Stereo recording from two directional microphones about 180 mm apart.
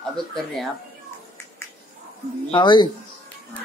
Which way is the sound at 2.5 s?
25° left (ahead or behind).